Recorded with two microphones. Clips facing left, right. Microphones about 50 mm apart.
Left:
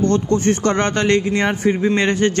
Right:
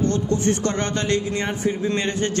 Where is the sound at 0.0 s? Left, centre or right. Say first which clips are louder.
Left 4 dB; left.